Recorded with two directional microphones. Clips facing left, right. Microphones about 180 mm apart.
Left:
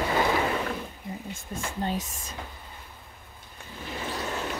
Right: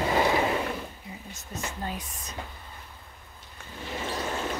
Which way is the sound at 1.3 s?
55° left (ahead or behind).